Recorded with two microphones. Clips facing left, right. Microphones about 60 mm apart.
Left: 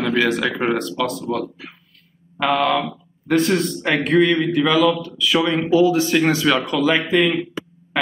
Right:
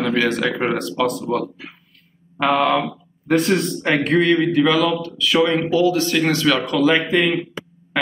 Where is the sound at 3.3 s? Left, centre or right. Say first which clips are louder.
Even; centre.